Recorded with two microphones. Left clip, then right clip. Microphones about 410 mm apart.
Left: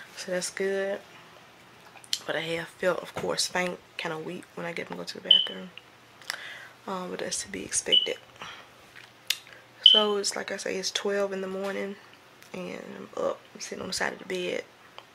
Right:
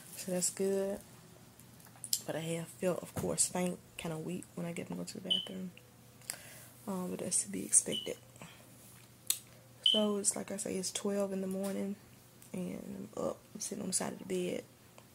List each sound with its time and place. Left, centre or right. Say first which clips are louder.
0.2 s speech: left 6 dB; right
2.2 s speech: left 11 dB; right
6.9 s speech: left 7 dB; right
9.9 s speech: left 9 dB; right